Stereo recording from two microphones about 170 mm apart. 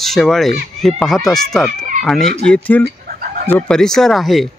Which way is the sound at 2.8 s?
60° right (ahead or behind).